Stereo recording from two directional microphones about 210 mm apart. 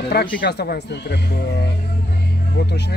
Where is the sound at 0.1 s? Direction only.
45° left (ahead or behind).